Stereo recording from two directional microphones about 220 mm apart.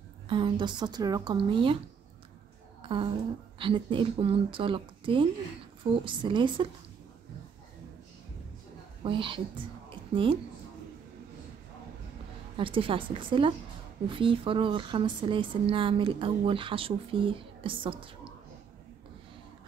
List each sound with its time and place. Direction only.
0.3 s speech: 20° right (ahead or behind)
2.8 s a sound: 25° right (ahead or behind)
3.5 s speech: 20° right (ahead or behind)
9.0 s speech: 25° right (ahead or behind)
9.8 s a sound: 25° right (ahead or behind)
12.5 s speech: 25° right (ahead or behind)